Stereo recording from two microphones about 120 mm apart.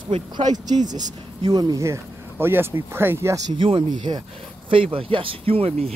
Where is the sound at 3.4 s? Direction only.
45° right (ahead or behind).